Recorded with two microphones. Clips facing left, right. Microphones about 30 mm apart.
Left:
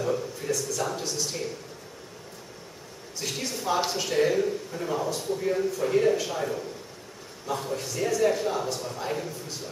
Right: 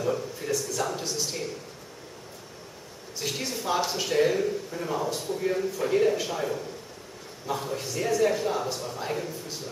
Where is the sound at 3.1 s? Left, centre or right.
Centre.